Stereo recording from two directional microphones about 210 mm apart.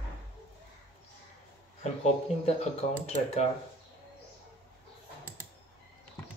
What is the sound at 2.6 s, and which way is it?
Speech, 30° left (ahead or behind).